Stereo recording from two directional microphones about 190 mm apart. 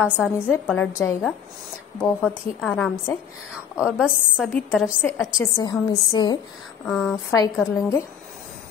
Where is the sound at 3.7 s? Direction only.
5° right (ahead or behind); by 6.3 s 20° left (ahead or behind).